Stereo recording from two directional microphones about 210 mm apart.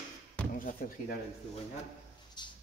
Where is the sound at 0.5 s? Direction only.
40° left (ahead or behind).